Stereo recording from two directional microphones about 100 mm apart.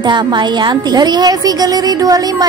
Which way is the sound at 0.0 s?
50° right (ahead or behind).